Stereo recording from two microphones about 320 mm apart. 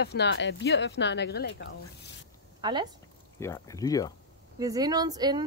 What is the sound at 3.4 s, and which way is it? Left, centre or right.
Speech, centre.